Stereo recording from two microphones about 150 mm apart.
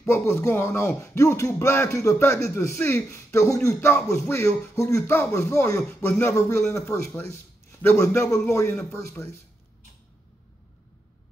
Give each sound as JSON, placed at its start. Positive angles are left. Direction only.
{"t": 0.0, "sound": "a man's voice", "side_deg": 20}
{"t": 7.8, "sound": "a man's voice", "side_deg": 15}